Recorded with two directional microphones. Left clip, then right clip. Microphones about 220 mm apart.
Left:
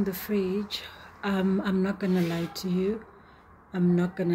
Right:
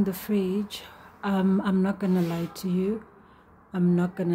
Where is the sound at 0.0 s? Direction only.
15° right (ahead or behind).